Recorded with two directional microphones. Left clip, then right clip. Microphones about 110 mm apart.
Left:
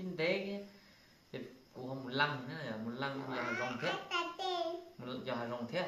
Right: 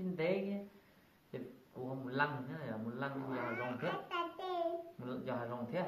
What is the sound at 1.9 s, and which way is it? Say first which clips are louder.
A man's voice: left 2 dB; 5° left (ahead or behind).